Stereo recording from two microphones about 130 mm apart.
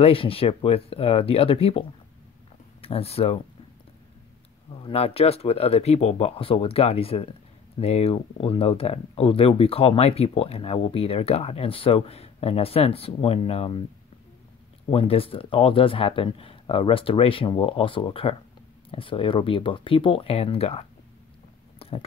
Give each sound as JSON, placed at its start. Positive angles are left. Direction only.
{"t": 0.0, "sound": "speech", "side_deg": 45}
{"t": 4.7, "sound": "speech", "side_deg": 45}
{"t": 14.9, "sound": "speech", "side_deg": 45}